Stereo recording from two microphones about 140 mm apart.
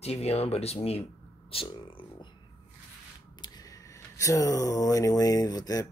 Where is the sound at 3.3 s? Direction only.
30° left (ahead or behind).